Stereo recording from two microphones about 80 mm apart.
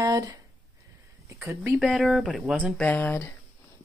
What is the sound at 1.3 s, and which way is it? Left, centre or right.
Speech, right.